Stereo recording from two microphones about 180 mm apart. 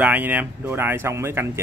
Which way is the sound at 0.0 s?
10° right (ahead or behind).